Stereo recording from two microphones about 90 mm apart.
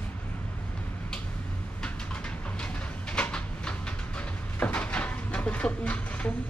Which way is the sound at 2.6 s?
10° left (ahead or behind).